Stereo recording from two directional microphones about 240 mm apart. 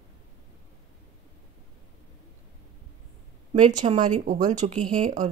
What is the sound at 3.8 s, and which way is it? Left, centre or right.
A woman's voice, right.